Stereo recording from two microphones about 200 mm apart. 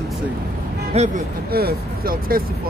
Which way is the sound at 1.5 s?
50° right (ahead or behind).